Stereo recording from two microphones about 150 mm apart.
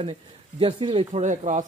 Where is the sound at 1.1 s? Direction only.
50° right (ahead or behind).